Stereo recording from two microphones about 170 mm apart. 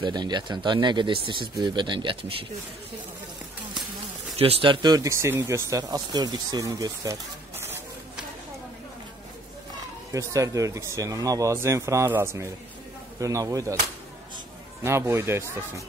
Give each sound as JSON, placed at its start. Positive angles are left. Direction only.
{"t": 0.0, "sound": "speech", "side_deg": -25}
{"t": 4.4, "sound": "speech", "side_deg": -35}
{"t": 10.1, "sound": "speech", "side_deg": -20}
{"t": 14.8, "sound": "speech", "side_deg": -15}